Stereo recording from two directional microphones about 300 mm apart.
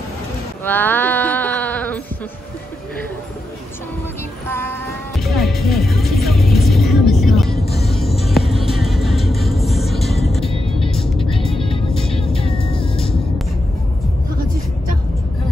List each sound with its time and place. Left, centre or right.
0.7 s a sound: centre
4.5 s music: centre
11.1 s music: centre